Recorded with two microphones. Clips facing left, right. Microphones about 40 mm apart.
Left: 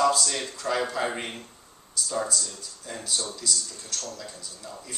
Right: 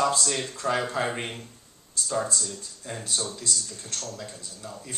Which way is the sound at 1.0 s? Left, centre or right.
Centre.